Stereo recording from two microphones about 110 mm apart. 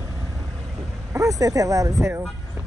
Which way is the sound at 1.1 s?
30° right (ahead or behind).